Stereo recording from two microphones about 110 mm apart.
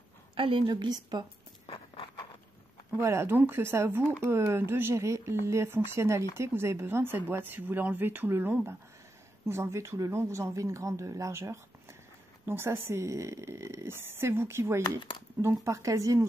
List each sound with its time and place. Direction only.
0.4 s a woman's voice: 55° right (ahead or behind)
0.7 s a woman's voice: 40° right (ahead or behind)
3.0 s speech: 25° right (ahead or behind)